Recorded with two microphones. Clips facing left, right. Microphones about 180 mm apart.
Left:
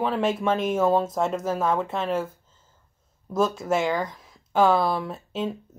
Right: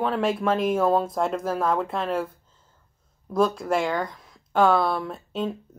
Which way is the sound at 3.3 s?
Centre (ahead or behind).